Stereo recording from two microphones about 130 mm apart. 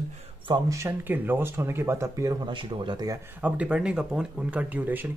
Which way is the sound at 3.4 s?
10° right (ahead or behind).